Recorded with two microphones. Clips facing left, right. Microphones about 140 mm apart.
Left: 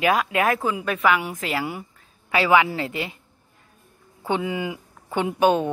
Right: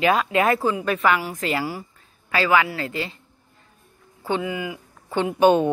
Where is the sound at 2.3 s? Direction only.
20° left (ahead or behind).